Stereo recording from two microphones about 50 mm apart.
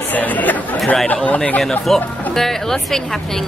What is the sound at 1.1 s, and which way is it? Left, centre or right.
Speech, left.